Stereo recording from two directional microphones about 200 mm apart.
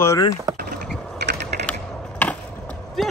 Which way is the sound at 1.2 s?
55° right (ahead or behind).